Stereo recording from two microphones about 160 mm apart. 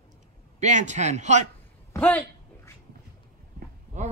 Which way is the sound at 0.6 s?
50° right (ahead or behind).